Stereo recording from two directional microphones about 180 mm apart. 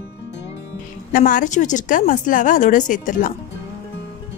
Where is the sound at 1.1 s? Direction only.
45° left (ahead or behind).